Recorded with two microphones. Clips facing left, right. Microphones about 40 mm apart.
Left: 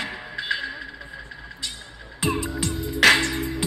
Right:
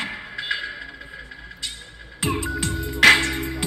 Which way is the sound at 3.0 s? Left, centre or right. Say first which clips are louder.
Right 2 dB; centre.